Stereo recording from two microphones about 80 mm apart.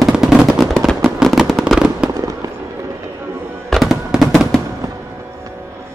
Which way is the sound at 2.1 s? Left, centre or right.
Right.